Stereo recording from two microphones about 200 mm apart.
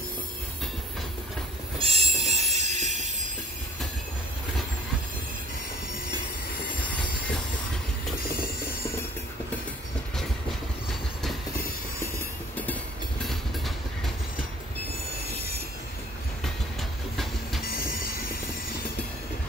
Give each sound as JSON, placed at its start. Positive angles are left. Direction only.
{"t": 1.8, "sound": "train", "side_deg": -30}
{"t": 8.2, "sound": "music", "side_deg": 50}
{"t": 13.3, "sound": "train", "side_deg": 0}
{"t": 17.6, "sound": "train", "side_deg": 45}